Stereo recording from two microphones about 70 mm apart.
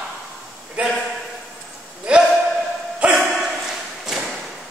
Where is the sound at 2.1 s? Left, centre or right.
Centre.